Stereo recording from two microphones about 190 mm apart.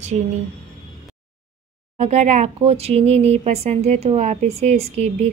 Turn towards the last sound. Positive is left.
turn(degrees=-35)  # may be behind; listen again after turning